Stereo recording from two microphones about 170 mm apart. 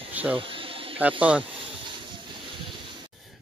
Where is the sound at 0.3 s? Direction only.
30° right (ahead or behind).